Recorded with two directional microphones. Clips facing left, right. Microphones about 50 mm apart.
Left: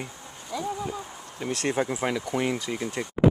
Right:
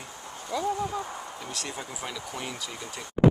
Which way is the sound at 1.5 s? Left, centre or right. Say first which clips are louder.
Left 14 dB; left.